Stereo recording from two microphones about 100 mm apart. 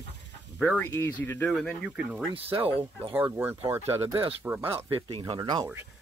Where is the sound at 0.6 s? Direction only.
15° left (ahead or behind).